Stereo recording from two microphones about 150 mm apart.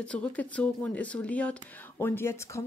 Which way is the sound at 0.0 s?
10° left (ahead or behind).